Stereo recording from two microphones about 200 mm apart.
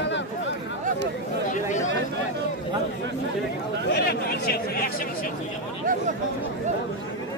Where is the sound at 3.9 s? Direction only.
50° left (ahead or behind).